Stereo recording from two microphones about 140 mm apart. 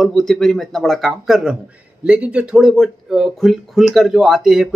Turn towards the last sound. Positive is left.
turn(degrees=-5)  # may be behind; listen again after turning